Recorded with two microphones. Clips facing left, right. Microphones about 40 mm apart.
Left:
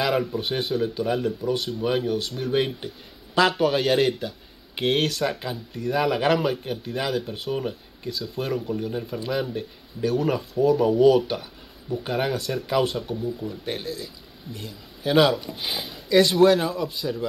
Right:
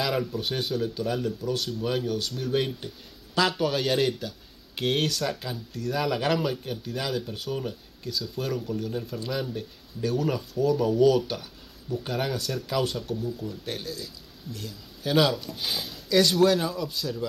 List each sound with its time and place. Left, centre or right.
0.0 s a man's voice: centre